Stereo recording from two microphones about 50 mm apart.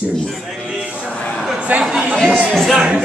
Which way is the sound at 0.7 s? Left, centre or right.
Right.